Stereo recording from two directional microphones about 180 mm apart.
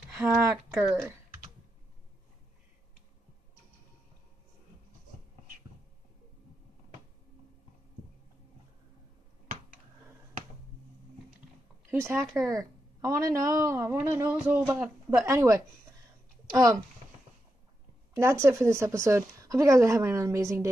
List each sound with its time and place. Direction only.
0.1 s speech: 5° right (ahead or behind)
11.9 s speech: 15° right (ahead or behind)
18.1 s speech: 15° right (ahead or behind)